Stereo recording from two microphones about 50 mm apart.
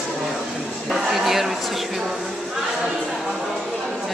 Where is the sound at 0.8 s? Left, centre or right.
Centre.